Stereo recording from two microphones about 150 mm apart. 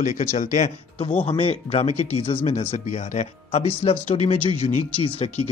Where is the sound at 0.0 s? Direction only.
45° left (ahead or behind).